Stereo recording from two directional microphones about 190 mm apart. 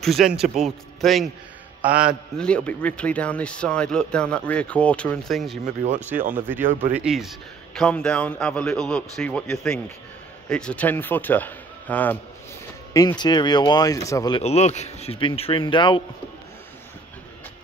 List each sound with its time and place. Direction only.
0.0 s a man's voice: centre (ahead or behind)
5.9 s speech: 40° right (ahead or behind)
6.9 s a man's voice: 5° right (ahead or behind)
12.9 s speech: 20° left (ahead or behind)
14.4 s speech: 35° left (ahead or behind)